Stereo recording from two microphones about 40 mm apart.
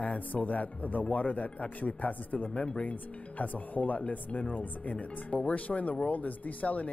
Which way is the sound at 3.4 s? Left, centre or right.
Left.